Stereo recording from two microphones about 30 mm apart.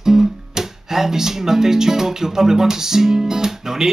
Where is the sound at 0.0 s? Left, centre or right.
Centre.